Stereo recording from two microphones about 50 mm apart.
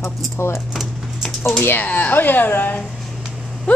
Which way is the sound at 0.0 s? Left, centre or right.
Left.